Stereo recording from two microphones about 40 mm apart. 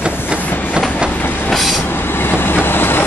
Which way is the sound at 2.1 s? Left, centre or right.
Left.